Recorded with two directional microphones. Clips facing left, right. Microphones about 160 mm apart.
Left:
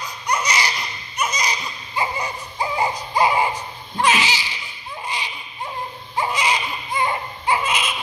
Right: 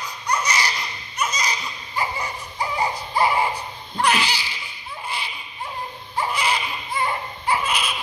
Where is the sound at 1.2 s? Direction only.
15° left (ahead or behind).